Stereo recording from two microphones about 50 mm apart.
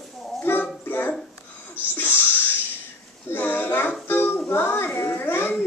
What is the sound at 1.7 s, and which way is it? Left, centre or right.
Sneeze, left.